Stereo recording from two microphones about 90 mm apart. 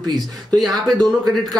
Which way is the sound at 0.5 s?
Centre (ahead or behind).